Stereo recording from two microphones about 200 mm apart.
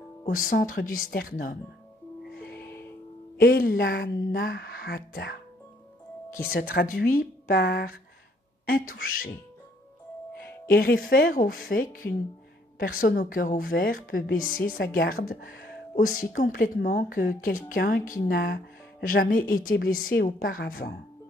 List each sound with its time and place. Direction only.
0.2 s speech: 45° left (ahead or behind)
2.3 s music: 55° left (ahead or behind)
3.3 s speech: 55° left (ahead or behind)
6.5 s speech: 50° left (ahead or behind)
10.3 s a woman's voice: 50° left (ahead or behind)